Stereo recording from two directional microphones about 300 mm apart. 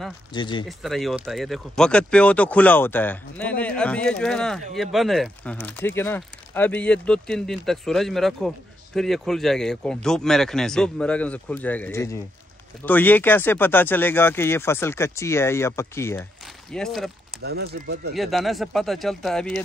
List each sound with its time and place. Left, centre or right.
0.3 s speech: centre
0.7 s speech: centre
17.4 s speech: right
18.1 s speech: centre